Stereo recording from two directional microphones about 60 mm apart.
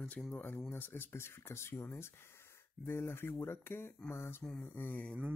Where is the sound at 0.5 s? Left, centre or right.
Left.